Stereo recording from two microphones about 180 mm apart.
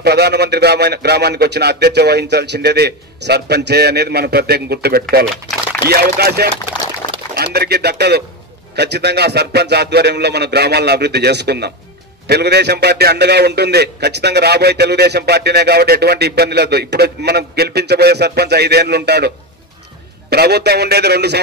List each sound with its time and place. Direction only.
0.0 s a man's voice: 65° right (ahead or behind)